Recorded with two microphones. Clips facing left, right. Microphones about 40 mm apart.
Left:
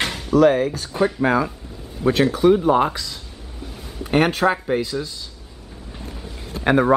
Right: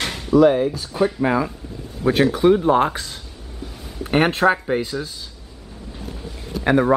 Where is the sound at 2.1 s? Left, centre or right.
Right.